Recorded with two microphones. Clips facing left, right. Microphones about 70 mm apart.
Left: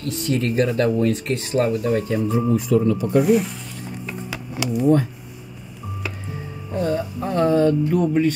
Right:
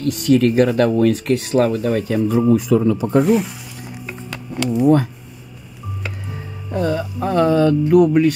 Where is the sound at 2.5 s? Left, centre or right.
Right.